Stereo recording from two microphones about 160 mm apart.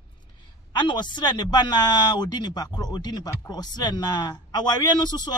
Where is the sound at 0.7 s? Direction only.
30° left (ahead or behind).